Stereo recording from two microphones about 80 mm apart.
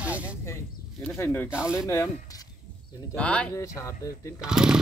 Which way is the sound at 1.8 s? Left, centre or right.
Left.